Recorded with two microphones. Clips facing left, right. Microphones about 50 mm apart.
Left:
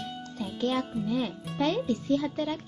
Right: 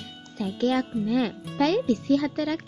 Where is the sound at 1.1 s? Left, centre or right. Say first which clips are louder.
Right 6 dB; right.